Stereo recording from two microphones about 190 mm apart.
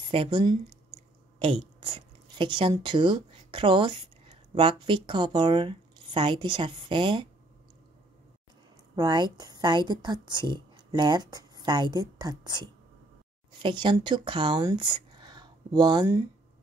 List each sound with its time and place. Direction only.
0.1 s speech: 30° right (ahead or behind)
8.9 s a woman's voice: 20° right (ahead or behind)